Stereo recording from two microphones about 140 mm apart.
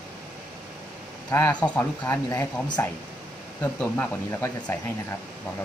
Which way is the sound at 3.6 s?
10° left (ahead or behind).